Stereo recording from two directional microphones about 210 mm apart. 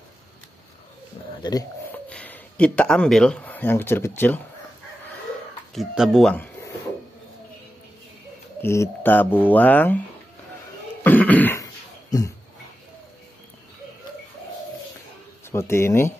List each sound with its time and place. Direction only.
1.4 s speech: 15° left (ahead or behind)
2.0 s speech: 5° left (ahead or behind)
5.8 s speech: centre (ahead or behind)
8.5 s speech: 10° left (ahead or behind)
11.1 s throat clearing: 10° left (ahead or behind)
15.5 s speech: 10° left (ahead or behind)